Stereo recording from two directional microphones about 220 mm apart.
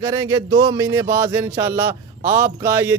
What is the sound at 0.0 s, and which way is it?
Speech, 15° right (ahead or behind).